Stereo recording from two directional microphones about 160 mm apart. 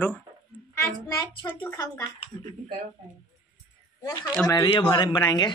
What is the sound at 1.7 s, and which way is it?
Speech, 20° left (ahead or behind).